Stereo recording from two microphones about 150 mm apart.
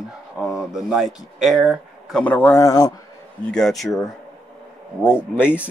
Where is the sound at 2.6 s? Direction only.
25° left (ahead or behind).